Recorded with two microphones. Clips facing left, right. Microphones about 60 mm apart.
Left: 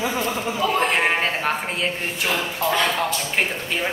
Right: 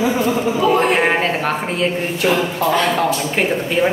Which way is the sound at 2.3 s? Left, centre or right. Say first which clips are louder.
Right 6 dB; centre.